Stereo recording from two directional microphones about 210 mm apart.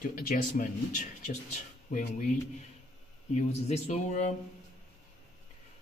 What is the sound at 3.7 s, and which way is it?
Speech, 35° left (ahead or behind).